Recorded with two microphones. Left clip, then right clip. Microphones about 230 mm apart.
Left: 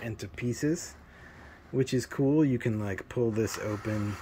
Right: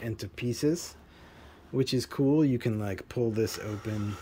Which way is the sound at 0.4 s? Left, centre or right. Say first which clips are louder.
Right 2 dB; centre.